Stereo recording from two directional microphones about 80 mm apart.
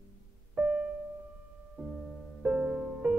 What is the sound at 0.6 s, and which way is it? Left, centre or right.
Music, centre.